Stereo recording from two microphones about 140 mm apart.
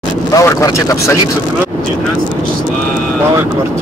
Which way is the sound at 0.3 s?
25° left (ahead or behind).